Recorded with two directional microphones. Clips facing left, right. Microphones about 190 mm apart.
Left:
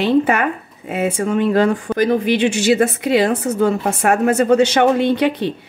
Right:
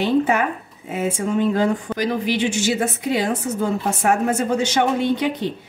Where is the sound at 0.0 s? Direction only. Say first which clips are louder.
Left 3 dB; 65° left (ahead or behind).